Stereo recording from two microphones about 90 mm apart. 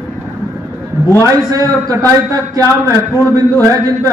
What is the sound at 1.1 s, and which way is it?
Speech, 35° right (ahead or behind).